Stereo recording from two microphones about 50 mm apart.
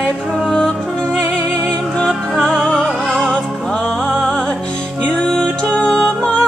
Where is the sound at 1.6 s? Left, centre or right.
Centre.